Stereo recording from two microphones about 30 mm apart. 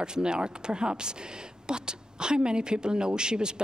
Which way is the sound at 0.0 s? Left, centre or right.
Right.